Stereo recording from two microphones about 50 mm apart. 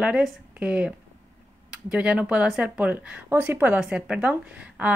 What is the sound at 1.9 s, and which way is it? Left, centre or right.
Speech, right.